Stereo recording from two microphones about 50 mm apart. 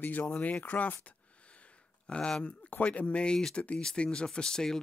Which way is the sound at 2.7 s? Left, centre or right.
Left.